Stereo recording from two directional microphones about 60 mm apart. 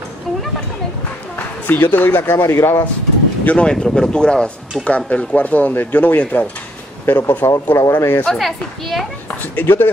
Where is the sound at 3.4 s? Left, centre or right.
Centre.